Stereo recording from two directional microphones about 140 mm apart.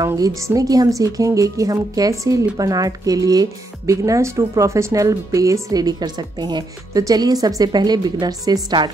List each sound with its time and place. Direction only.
0.5 s a woman's voice: 25° right (ahead or behind)